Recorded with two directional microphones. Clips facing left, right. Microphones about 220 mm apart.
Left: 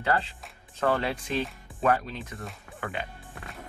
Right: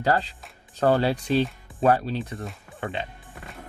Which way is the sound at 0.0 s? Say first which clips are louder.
Right 4 dB; 35° right (ahead or behind).